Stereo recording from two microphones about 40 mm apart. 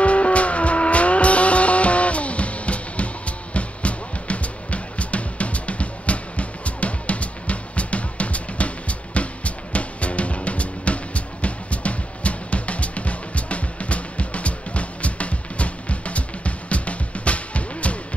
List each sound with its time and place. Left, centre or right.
0.0 s vehicle: left